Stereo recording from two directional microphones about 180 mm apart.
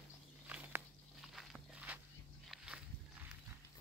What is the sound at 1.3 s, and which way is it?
Walk, centre (ahead or behind).